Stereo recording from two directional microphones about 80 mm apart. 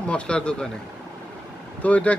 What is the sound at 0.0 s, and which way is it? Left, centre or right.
Speech, centre.